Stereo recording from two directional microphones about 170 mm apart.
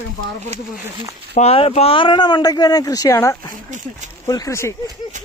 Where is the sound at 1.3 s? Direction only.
35° left (ahead or behind).